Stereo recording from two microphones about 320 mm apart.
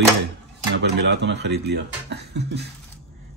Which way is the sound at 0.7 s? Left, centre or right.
Right.